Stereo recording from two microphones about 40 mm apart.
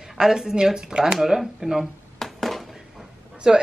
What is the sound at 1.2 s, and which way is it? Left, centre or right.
Speech, centre.